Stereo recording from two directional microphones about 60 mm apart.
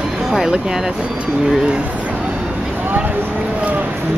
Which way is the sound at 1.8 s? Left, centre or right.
Right.